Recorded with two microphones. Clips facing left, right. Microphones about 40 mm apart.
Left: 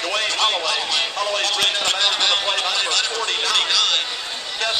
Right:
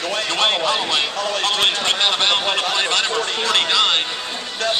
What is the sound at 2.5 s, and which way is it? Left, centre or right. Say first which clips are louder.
Speech: right 1 dB; right.